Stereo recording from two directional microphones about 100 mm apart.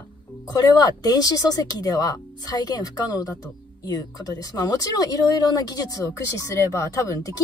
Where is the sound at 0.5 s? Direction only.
40° left (ahead or behind).